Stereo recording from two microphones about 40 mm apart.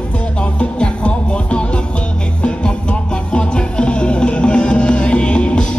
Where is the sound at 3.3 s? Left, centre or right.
Left.